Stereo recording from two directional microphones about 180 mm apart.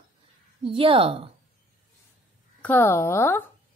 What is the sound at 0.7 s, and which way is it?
Speech, 30° right (ahead or behind).